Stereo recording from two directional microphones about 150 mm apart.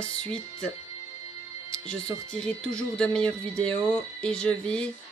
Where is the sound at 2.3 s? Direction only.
5° left (ahead or behind).